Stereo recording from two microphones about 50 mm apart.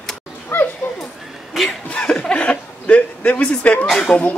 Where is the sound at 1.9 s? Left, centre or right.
Left.